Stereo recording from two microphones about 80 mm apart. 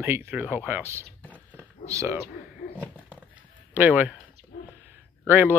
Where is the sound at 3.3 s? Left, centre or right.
Right.